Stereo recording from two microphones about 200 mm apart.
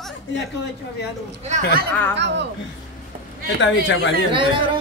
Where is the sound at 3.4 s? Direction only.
70° left (ahead or behind).